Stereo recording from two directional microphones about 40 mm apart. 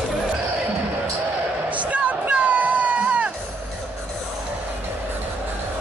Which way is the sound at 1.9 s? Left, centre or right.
Right.